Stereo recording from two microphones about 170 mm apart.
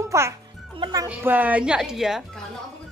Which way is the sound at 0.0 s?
15° right (ahead or behind).